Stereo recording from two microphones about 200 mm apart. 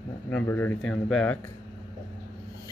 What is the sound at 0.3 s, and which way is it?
Speech, 10° left (ahead or behind).